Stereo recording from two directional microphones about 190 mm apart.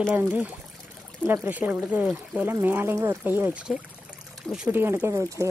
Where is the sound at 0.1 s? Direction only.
10° right (ahead or behind).